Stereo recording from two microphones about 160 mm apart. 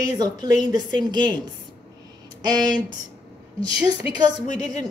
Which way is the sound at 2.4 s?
25° right (ahead or behind).